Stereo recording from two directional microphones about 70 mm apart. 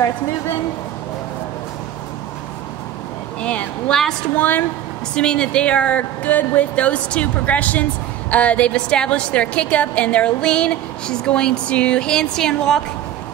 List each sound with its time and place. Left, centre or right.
4.4 s a woman's voice: left
5.1 s a woman's voice: centre